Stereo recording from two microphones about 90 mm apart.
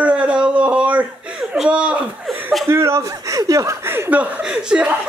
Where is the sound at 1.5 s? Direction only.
10° right (ahead or behind).